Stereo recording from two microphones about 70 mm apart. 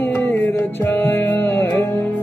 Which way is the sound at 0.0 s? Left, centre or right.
Left.